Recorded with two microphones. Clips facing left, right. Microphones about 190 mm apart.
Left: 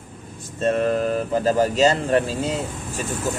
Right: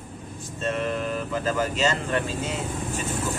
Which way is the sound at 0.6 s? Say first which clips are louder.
Left 7 dB; 40° left (ahead or behind).